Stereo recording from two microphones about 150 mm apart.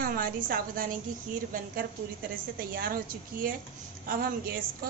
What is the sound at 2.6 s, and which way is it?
A woman's voice, 75° right (ahead or behind).